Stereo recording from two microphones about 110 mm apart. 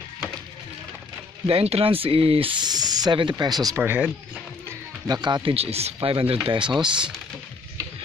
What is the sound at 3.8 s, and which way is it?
Speech, 15° right (ahead or behind).